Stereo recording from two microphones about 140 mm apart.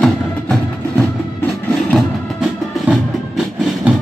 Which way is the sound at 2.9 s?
5° right (ahead or behind).